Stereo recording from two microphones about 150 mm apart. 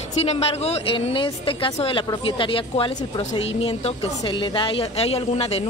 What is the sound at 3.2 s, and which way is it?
A woman's voice, 45° left (ahead or behind).